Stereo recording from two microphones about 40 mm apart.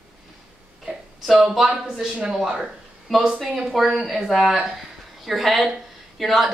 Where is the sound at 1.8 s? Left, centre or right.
Centre.